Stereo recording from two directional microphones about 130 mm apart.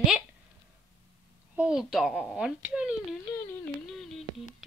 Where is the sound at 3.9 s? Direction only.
Centre (ahead or behind).